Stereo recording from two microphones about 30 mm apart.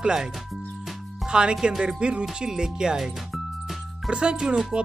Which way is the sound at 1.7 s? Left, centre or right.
Centre.